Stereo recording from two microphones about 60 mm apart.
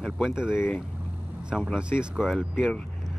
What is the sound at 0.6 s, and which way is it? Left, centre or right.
Speech, left.